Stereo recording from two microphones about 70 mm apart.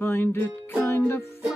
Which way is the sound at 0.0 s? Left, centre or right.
Left.